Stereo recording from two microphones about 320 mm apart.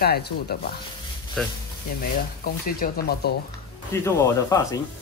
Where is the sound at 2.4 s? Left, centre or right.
Left.